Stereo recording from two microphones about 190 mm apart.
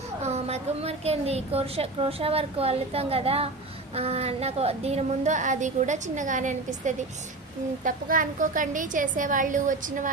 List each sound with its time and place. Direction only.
0.2 s a woman's voice: 35° right (ahead or behind)